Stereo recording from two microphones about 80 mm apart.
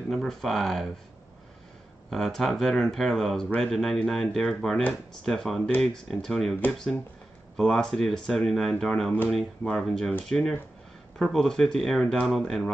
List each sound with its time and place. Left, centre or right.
0.1 s speech: centre
2.0 s speech: centre